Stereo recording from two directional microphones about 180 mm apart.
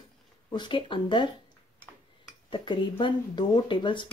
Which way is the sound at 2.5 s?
25° left (ahead or behind).